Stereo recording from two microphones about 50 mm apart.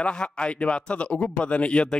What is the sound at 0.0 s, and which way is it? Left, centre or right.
Speech, centre.